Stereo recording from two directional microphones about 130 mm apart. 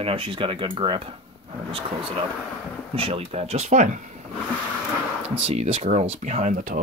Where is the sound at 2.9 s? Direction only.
45° right (ahead or behind); by 4.2 s 70° right (ahead or behind).